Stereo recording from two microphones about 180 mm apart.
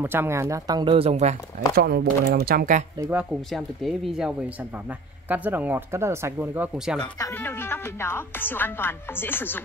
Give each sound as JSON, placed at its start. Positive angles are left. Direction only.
{"t": 0.0, "sound": "speech", "side_deg": -10}
{"t": 1.8, "sound": "speech", "side_deg": -60}
{"t": 3.0, "sound": "speech", "side_deg": -10}
{"t": 5.3, "sound": "speech", "side_deg": -10}
{"t": 7.0, "sound": "speech", "side_deg": 20}